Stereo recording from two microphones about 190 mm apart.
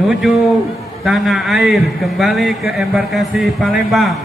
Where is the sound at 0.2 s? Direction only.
Centre (ahead or behind).